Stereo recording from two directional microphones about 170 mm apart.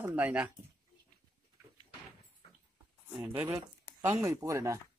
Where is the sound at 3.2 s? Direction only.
10° right (ahead or behind).